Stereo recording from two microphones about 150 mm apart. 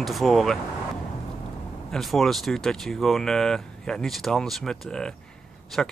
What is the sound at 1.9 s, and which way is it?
Speech, centre (ahead or behind).